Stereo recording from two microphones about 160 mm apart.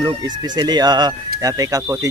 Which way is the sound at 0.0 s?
25° right (ahead or behind).